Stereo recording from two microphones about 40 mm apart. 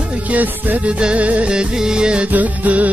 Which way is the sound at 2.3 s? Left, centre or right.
Right.